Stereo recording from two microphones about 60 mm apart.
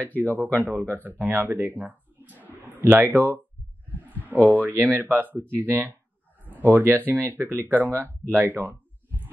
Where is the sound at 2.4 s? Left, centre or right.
Right.